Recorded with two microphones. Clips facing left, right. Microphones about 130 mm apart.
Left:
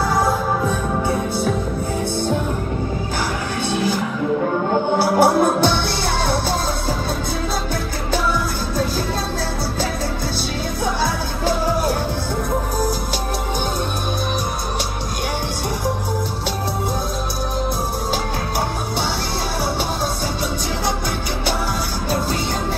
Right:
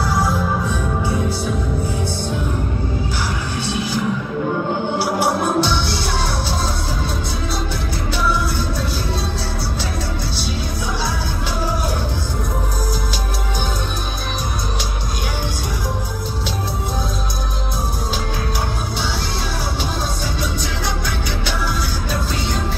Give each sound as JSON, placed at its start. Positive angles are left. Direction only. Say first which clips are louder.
{"t": 4.9, "sound": "music", "louder": "left 6 dB", "side_deg": 50}